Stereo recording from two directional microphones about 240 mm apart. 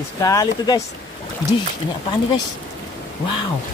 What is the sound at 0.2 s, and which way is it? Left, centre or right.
Speech, centre.